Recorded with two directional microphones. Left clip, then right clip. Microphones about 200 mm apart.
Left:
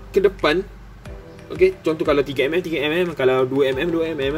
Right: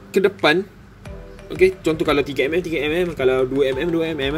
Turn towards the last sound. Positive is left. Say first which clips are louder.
# even
turn(degrees=-15)  # may be behind; listen again after turning